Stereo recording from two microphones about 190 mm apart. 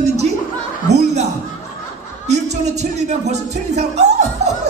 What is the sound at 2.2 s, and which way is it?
Speech, 35° right (ahead or behind).